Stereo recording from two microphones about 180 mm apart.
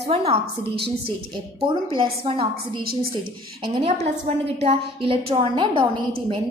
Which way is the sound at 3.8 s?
35° right (ahead or behind).